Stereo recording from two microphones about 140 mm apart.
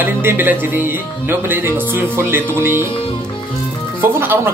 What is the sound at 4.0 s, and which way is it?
Speech, 15° right (ahead or behind).